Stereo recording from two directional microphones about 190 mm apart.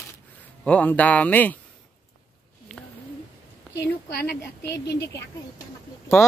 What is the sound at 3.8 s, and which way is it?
Speech, 55° left (ahead or behind).